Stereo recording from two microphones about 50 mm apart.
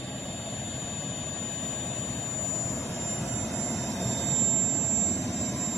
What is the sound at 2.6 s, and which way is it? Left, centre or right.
Vehicle, centre.